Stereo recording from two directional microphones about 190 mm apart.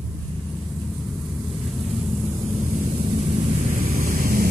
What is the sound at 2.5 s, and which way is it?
Vehicle, 35° right (ahead or behind).